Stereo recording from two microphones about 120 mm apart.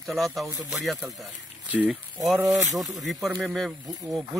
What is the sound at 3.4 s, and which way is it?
Speech, centre (ahead or behind).